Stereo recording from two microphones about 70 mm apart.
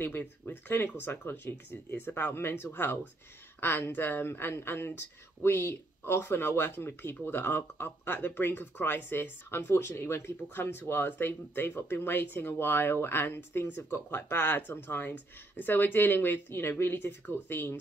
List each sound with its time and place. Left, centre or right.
0.0 s speech: left